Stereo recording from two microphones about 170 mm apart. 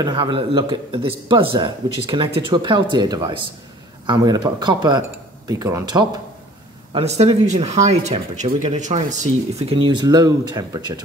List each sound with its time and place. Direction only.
0.0 s a man's voice: 25° right (ahead or behind)
6.9 s speech: 35° right (ahead or behind)
9.8 s a man's voice: 25° right (ahead or behind)